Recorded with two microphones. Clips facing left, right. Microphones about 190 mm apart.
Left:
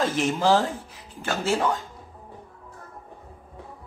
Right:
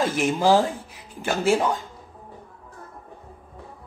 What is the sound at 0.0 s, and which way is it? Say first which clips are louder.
Speech: right 2 dB; 10° right (ahead or behind).